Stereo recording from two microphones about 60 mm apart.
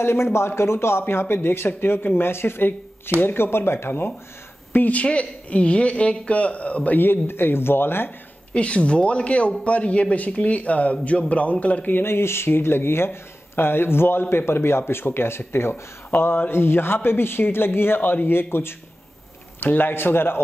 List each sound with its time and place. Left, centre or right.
0.0 s speech: left
4.7 s speech: left
7.0 s speech: left
8.5 s speech: centre
11.9 s speech: left